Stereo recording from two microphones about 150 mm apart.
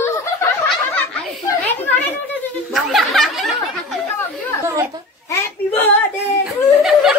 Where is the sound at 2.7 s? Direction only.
Centre (ahead or behind).